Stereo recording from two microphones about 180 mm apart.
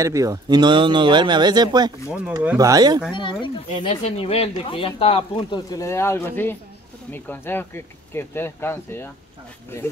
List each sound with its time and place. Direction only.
0.0 s speech: 20° right (ahead or behind)
3.1 s speech: 25° left (ahead or behind)
5.7 s speech: 15° left (ahead or behind)